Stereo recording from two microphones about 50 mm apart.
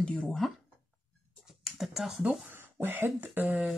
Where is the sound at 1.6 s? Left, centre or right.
Centre.